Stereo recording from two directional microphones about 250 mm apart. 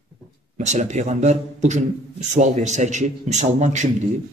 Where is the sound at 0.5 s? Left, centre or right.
Right.